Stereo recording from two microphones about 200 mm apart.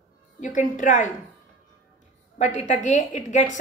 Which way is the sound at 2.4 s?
35° left (ahead or behind).